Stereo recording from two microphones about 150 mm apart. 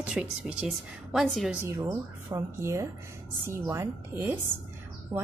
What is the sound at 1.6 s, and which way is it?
A woman's voice, 15° right (ahead or behind).